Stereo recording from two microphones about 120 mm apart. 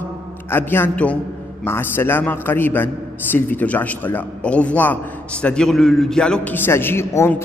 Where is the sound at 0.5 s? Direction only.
15° left (ahead or behind).